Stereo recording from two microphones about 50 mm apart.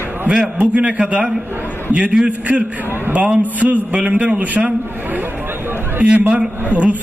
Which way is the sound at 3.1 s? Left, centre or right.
Right.